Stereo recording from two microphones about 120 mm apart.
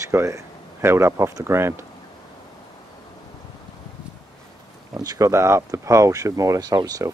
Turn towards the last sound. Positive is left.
turn(degrees=-30)  # may be behind; listen again after turning